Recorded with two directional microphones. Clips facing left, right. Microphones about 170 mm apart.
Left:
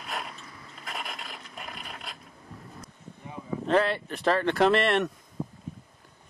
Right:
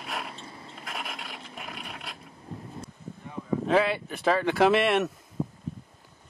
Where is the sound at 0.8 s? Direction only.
Centre (ahead or behind).